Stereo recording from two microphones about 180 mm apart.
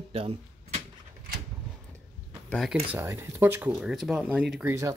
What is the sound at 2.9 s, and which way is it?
Speech, 15° right (ahead or behind).